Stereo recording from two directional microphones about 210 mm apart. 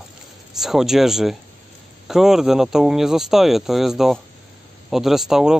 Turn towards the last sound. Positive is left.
turn(degrees=0)  # may be behind; listen again after turning